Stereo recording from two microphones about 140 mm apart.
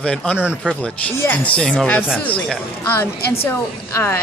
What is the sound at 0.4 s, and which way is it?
Speech, 10° right (ahead or behind).